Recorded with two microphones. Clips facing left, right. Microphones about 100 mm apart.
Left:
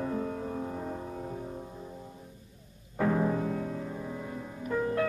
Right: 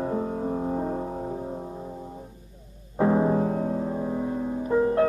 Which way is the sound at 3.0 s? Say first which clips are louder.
Right 6 dB; 25° right (ahead or behind).